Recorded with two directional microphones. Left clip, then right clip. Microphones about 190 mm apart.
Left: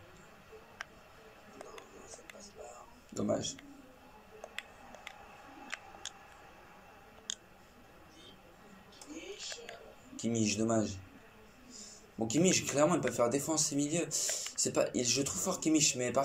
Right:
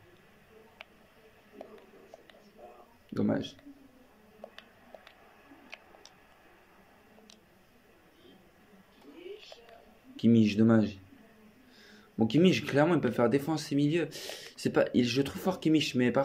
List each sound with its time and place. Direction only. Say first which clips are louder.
3.2 s speech: right 2 dB; 45° right (ahead or behind)
10.1 s speech: right 8 dB; 40° right (ahead or behind)